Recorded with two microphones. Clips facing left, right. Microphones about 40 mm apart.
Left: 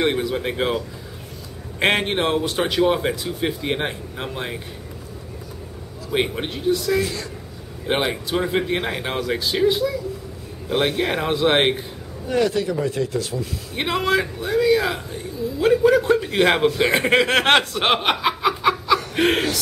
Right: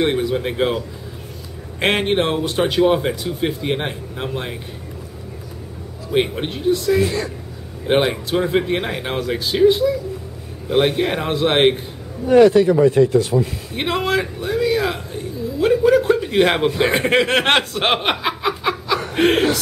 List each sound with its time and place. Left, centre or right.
0.0 s speech: centre
6.0 s speech: centre
7.0 s speech: right
7.8 s speech: centre
12.3 s speech: right
13.7 s a man's voice: centre
15.6 s a sound: centre
16.6 s speech: centre
16.9 s snicker: centre
19.1 s speech: centre